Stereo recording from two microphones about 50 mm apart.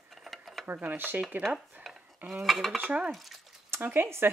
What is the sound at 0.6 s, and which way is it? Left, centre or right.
Speech, right.